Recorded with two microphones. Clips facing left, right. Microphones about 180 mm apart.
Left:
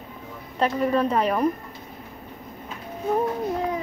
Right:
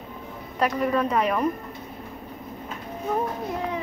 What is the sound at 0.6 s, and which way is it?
Speech, 30° left (ahead or behind).